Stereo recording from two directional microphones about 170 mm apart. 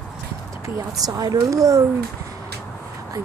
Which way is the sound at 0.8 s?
20° right (ahead or behind).